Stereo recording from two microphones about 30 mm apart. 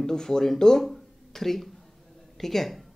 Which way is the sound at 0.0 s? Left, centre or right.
Left.